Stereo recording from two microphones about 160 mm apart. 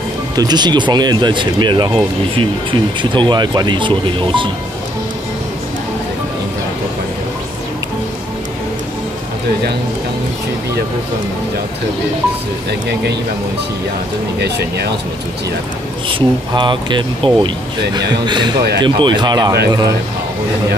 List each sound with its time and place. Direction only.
0.4 s speech: 25° right (ahead or behind)
12.8 s speech: 90° right
14.4 s speech: 90° right
16.1 s speech: 30° right (ahead or behind)